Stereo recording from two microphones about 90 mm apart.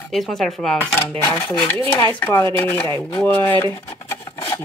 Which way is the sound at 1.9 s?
25° left (ahead or behind).